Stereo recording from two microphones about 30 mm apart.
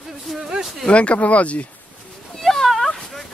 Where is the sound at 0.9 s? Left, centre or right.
Left.